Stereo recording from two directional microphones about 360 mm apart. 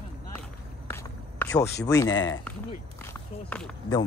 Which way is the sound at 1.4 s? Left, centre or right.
Centre.